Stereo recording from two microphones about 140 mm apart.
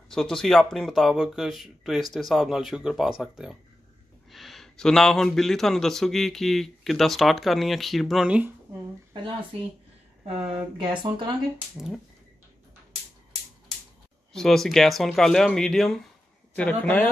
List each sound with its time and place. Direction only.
0.1 s speech: 5° left (ahead or behind)
10.5 s speech: 35° right (ahead or behind)
11.5 s speech: 5° right (ahead or behind)
14.3 s a man's voice: 5° left (ahead or behind)